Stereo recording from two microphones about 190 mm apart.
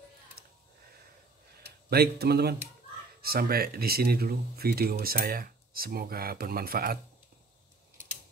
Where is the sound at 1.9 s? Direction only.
55° right (ahead or behind).